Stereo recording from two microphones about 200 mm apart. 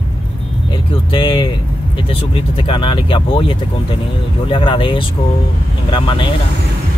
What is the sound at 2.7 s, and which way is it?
Speech, 25° left (ahead or behind).